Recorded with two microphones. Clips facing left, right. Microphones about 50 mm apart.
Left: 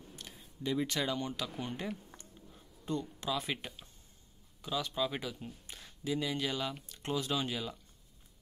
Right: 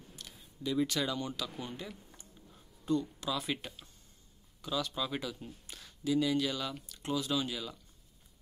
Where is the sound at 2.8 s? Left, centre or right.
Left.